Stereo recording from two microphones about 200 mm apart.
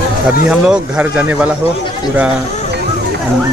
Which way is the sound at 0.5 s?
5° right (ahead or behind).